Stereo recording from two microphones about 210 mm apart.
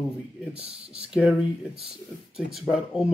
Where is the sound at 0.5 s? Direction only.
30° right (ahead or behind).